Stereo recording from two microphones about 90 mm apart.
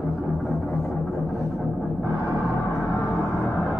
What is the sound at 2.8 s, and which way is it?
Music, 35° left (ahead or behind).